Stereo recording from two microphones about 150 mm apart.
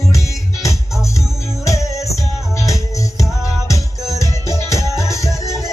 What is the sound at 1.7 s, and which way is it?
Music, 20° left (ahead or behind).